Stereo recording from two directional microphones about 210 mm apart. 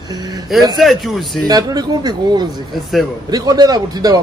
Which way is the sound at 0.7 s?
Centre (ahead or behind).